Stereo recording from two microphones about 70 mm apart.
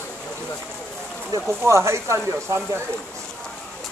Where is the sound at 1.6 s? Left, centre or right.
Right.